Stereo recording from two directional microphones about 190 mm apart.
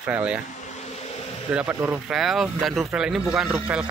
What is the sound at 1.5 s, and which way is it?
Speech, 5° right (ahead or behind).